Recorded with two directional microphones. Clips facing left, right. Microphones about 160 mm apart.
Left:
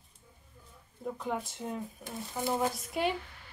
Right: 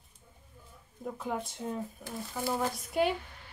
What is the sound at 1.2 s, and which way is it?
Speech, centre (ahead or behind).